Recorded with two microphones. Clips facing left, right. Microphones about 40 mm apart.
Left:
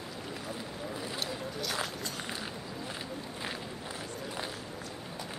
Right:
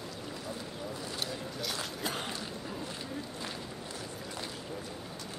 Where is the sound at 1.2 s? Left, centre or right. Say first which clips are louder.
Left 1 dB; centre.